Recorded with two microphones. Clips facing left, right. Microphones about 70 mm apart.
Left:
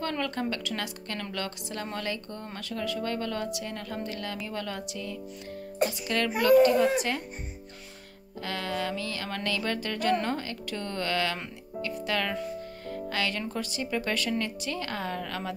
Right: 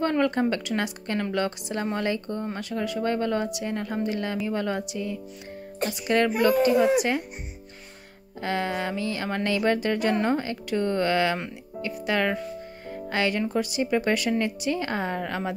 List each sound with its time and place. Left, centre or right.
0.0 s a woman's voice: right
8.4 s a woman's voice: right
12.9 s music: right
13.4 s a woman's voice: centre